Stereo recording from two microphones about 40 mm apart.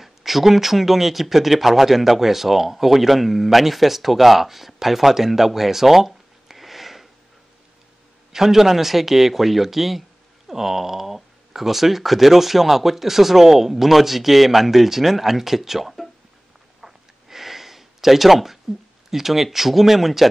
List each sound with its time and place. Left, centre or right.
0.0 s speech: centre
8.3 s speech: centre
16.8 s a sound: centre
19.0 s speech: centre